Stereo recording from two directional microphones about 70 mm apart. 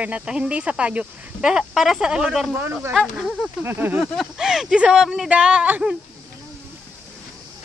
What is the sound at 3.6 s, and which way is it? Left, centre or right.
Speech, right.